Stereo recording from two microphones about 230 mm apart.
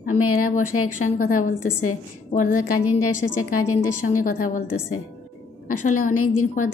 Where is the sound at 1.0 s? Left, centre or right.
Left.